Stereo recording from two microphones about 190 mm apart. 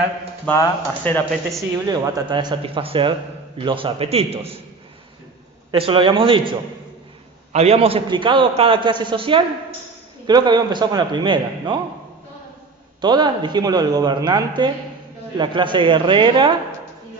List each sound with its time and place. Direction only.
0.5 s speech: 10° left (ahead or behind)
1.5 s speech: 20° right (ahead or behind)
5.7 s speech: 25° right (ahead or behind)
7.5 s speech: 35° right (ahead or behind)
13.0 s speech: 25° right (ahead or behind)